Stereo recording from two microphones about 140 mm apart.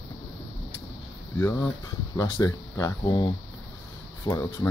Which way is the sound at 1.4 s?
20° left (ahead or behind).